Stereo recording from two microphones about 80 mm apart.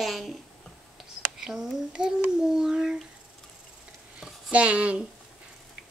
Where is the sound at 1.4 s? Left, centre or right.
Centre.